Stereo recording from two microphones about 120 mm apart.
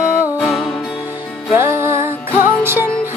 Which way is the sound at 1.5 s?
20° right (ahead or behind).